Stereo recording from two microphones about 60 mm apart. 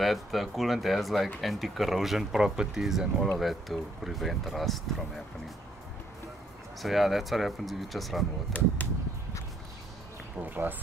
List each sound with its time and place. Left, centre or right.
0.0 s speech: centre
6.8 s speech: centre
8.5 s speech: left
10.4 s speech: right